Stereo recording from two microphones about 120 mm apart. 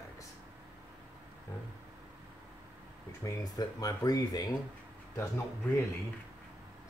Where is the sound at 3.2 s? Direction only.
30° left (ahead or behind).